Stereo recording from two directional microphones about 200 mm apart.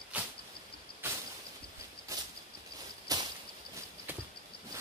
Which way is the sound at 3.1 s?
20° right (ahead or behind).